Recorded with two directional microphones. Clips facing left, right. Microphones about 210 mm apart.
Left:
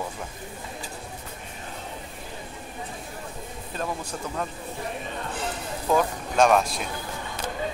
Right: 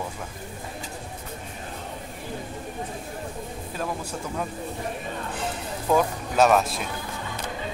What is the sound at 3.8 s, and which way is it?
Speech, 5° right (ahead or behind).